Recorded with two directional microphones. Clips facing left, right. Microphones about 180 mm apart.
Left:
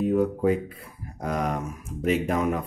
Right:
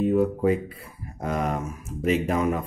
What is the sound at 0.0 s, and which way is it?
Speech, centre (ahead or behind).